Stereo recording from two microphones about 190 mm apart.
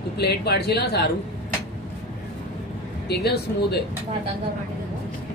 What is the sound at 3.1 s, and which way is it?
Speech, 55° left (ahead or behind).